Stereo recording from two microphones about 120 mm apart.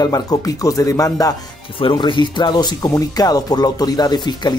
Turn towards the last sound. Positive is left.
turn(degrees=35)  # may be behind; listen again after turning